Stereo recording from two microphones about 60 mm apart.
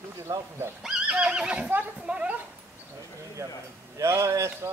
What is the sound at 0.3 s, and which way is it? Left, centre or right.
Speech, right.